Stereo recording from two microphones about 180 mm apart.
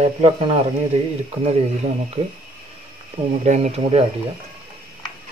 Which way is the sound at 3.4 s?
40° right (ahead or behind).